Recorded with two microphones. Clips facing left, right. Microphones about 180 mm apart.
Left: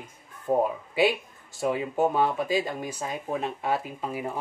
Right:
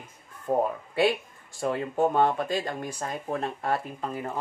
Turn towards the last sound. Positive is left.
turn(degrees=10)  # may be behind; listen again after turning